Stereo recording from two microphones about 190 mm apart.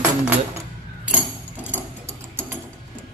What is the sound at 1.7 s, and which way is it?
Mechanisms, 10° right (ahead or behind).